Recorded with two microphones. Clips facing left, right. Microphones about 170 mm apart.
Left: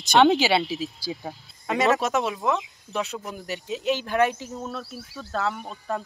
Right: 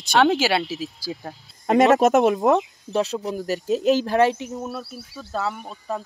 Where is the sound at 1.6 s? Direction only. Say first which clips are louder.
Right 7 dB; 50° right (ahead or behind).